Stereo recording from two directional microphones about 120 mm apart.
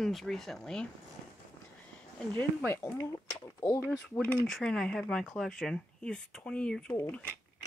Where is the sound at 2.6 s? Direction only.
20° left (ahead or behind).